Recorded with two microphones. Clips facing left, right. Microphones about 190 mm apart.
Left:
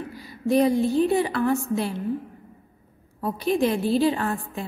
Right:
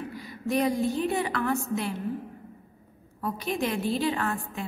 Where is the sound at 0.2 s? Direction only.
30° left (ahead or behind).